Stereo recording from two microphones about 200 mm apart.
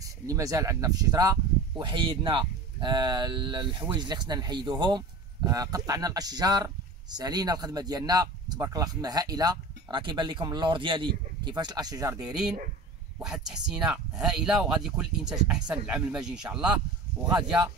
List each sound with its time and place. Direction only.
0.0 s speech: 15° right (ahead or behind)
12.2 s speech: 5° right (ahead or behind)